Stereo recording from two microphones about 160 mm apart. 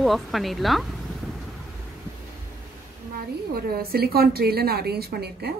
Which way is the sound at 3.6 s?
75° right (ahead or behind).